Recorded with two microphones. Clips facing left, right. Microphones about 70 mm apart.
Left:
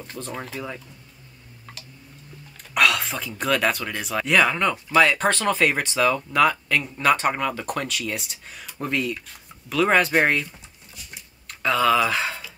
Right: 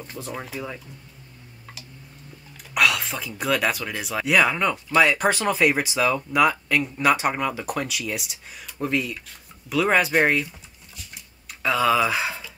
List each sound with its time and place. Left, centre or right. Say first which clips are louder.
0.0 s speech: even; centre
2.7 s speech: left 1 dB; centre